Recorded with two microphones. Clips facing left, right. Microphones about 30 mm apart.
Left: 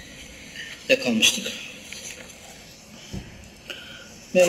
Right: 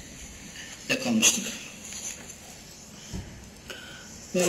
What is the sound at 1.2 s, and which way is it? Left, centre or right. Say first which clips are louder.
Speech: left 4 dB; left.